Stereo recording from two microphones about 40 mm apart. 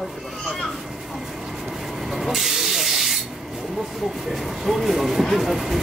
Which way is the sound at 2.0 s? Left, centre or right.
Centre.